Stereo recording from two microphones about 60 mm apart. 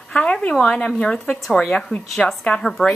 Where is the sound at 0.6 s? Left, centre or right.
Centre.